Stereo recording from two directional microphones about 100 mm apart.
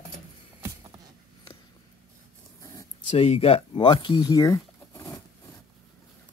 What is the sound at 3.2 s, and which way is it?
Speech, 75° left (ahead or behind).